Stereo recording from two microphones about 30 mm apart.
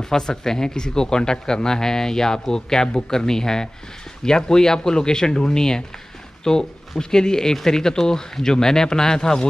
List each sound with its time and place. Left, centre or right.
0.0 s speech: centre